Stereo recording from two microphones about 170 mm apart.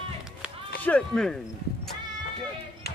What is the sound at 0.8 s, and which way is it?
Speech, 5° left (ahead or behind).